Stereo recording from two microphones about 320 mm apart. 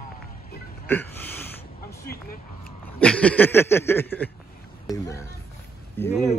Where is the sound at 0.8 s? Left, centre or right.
Centre.